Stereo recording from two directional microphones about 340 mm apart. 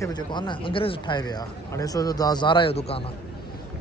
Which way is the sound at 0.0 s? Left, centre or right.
Centre.